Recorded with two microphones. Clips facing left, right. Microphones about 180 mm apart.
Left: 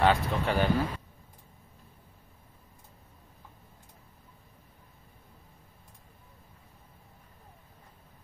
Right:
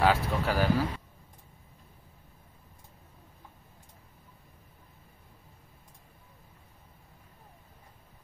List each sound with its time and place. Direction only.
0.0 s speech: centre (ahead or behind)